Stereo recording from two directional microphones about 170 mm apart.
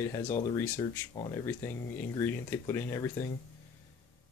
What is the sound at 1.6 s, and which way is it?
Speech, 10° left (ahead or behind).